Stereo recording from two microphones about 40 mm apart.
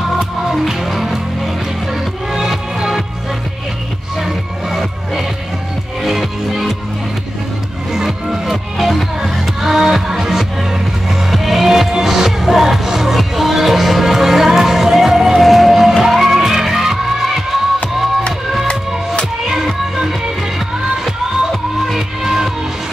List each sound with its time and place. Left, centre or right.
0.2 s music: centre
4.2 s music: centre
7.9 s music: centre
19.5 s music: centre
20.1 s music: centre